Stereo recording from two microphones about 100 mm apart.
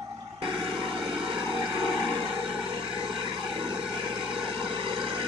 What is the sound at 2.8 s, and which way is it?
Vehicle, 60° right (ahead or behind).